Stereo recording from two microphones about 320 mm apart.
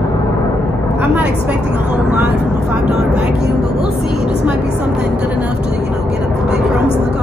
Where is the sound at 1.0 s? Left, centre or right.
Centre.